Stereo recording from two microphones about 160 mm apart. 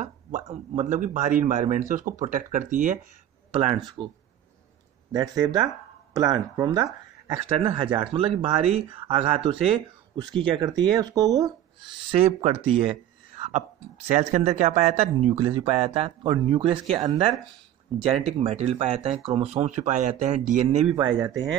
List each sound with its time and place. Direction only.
0.0 s a man's voice: 45° right (ahead or behind)
3.5 s speech: 30° right (ahead or behind)
5.1 s speech: 25° right (ahead or behind); by 20.8 s 50° right (ahead or behind)
20.9 s speech: 25° right (ahead or behind)